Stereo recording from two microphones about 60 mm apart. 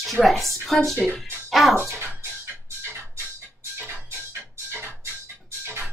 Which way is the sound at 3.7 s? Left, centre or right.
Right.